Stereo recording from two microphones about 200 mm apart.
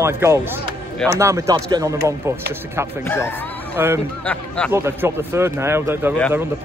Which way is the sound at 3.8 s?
15° right (ahead or behind).